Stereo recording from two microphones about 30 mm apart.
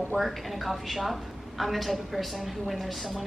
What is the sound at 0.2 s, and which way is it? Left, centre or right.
A woman's voice, centre.